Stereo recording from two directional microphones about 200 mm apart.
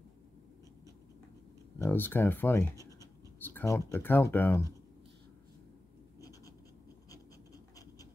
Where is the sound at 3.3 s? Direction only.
10° left (ahead or behind).